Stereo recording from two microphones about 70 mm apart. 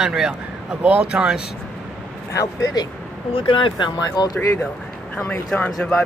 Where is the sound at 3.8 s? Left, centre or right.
Left.